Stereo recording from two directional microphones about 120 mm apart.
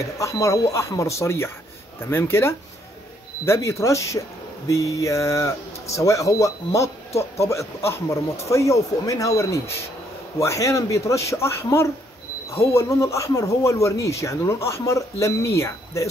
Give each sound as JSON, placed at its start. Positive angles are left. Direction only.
{"t": 0.0, "sound": "speech", "side_deg": 25}